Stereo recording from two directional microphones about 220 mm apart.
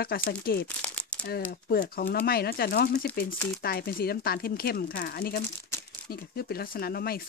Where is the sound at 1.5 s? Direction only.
40° left (ahead or behind).